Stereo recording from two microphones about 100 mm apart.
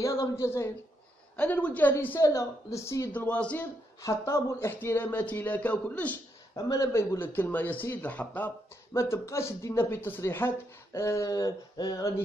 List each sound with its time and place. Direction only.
0.0 s speech: 30° left (ahead or behind)
1.3 s a woman's voice: 15° left (ahead or behind)
2.2 s speech: 30° left (ahead or behind)
3.1 s a woman's voice: 15° left (ahead or behind)
4.0 s speech: 30° left (ahead or behind)
6.5 s speech: 30° left (ahead or behind); by 8.5 s 15° left (ahead or behind)
8.9 s speech: 30° left (ahead or behind)